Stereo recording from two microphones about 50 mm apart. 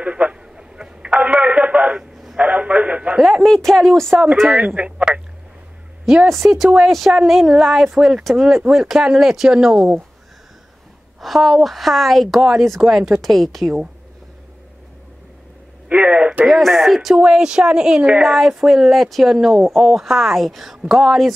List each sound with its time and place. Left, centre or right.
0.0 s a sound: right
1.2 s a sound: right
3.4 s a woman's voice: centre
4.6 s speech: right
6.2 s a woman's voice: centre
11.1 s a woman's voice: centre
15.9 s radio: right
16.4 s a woman's voice: centre
17.1 s speech: centre
18.2 s a woman's voice: centre